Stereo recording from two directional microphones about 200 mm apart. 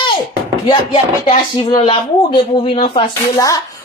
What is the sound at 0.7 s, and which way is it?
Speech, 25° left (ahead or behind).